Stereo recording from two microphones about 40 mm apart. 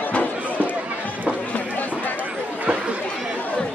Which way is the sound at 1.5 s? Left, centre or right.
Left.